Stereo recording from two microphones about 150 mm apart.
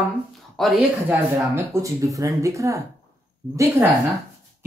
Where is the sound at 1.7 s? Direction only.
20° right (ahead or behind).